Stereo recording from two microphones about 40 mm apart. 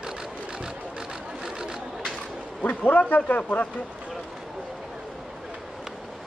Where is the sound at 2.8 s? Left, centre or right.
Left.